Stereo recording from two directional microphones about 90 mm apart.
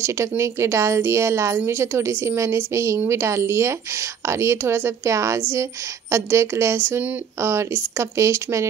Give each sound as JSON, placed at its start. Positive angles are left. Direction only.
{"t": 0.4, "sound": "a woman's voice", "side_deg": -35}